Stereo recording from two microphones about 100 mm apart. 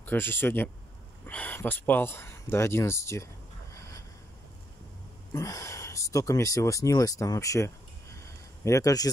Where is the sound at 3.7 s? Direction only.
30° left (ahead or behind).